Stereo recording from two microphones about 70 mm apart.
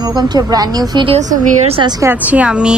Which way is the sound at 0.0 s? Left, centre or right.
Right.